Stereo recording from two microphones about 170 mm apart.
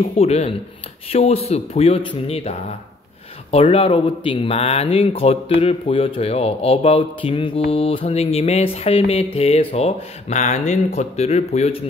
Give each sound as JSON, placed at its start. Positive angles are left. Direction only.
{"t": 0.0, "sound": "speech", "side_deg": 40}
{"t": 3.5, "sound": "speech", "side_deg": 35}